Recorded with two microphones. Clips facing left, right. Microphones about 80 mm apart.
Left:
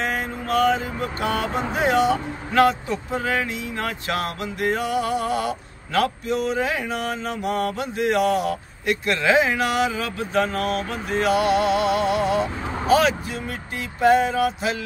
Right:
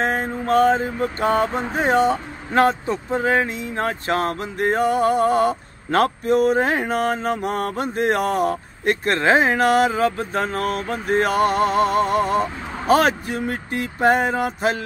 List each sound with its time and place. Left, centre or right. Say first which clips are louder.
0.0 s mantra: right 4 dB; right
10.9 s vehicle: right 4 dB; right